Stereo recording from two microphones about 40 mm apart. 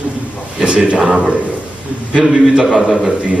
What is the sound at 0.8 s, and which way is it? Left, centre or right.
Speech, right.